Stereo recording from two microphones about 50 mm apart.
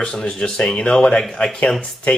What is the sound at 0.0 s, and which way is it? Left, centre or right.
Speech, centre.